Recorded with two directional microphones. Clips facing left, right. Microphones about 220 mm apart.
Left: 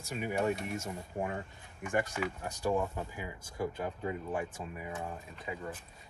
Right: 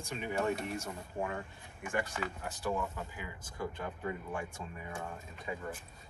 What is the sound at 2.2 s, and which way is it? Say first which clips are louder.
Speech: left 4 dB; 15° left (ahead or behind).